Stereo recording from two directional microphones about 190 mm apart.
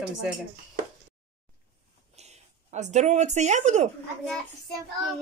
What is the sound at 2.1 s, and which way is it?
Speech, 35° right (ahead or behind).